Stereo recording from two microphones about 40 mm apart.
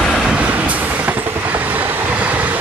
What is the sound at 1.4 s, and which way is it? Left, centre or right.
Train, right.